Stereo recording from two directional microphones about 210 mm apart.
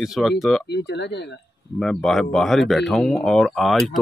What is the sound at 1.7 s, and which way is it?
Speech, centre (ahead or behind).